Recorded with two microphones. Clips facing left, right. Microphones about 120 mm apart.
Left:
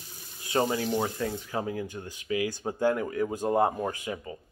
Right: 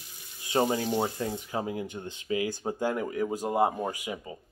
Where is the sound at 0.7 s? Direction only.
20° right (ahead or behind).